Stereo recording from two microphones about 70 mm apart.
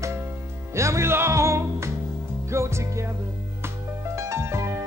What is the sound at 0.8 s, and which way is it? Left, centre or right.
Music, right.